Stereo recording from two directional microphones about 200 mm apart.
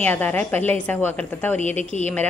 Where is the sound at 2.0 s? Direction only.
10° left (ahead or behind).